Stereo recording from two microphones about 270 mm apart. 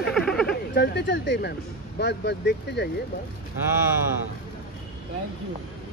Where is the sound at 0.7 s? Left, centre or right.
Left.